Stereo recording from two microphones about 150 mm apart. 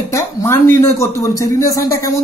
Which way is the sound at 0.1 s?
20° left (ahead or behind).